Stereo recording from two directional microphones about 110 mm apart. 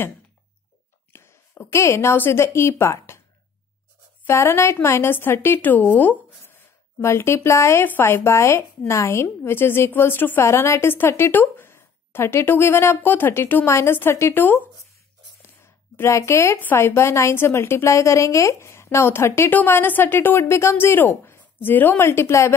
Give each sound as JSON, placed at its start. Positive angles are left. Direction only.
{"t": 1.1, "sound": "a woman's voice", "side_deg": 20}
{"t": 4.3, "sound": "a woman's voice", "side_deg": 25}
{"t": 15.6, "sound": "a woman's voice", "side_deg": 25}